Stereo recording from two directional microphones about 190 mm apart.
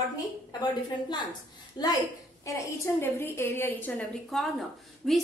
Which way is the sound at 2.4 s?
15° left (ahead or behind).